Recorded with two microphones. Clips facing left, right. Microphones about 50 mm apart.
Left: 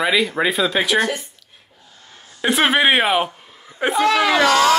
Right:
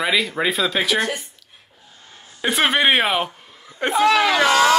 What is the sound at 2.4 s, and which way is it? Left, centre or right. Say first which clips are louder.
Speech: left 2 dB; centre.